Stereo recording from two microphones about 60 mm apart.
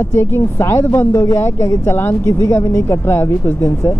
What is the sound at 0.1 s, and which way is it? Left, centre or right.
Speech, left.